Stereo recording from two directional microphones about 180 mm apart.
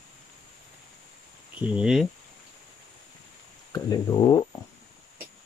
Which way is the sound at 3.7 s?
20° left (ahead or behind).